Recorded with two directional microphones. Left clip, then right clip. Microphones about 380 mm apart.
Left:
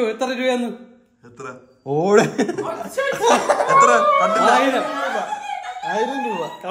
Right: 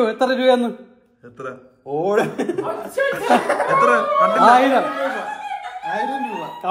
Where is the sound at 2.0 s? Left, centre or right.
Left.